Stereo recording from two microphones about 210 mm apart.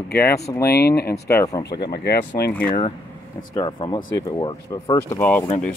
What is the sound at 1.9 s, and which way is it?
Speech, 50° left (ahead or behind).